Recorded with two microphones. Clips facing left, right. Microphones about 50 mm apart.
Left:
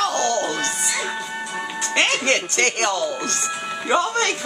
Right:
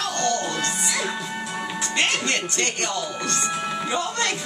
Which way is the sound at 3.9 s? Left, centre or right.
Left.